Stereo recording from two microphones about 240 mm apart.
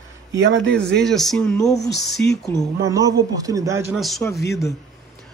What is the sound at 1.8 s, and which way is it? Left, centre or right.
Speech, left.